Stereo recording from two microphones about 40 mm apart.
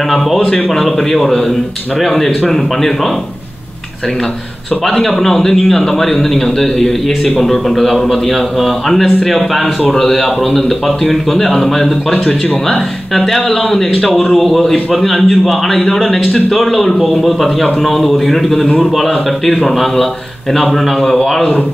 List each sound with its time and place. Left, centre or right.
0.1 s a man's voice: centre
4.8 s a man's voice: centre